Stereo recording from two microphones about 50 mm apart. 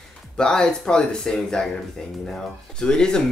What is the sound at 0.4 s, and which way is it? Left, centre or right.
Speech, centre.